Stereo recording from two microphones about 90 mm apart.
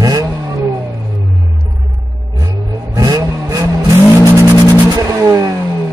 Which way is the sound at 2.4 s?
45° right (ahead or behind).